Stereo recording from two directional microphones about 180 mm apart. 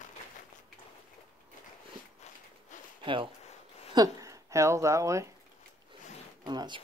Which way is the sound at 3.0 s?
30° right (ahead or behind).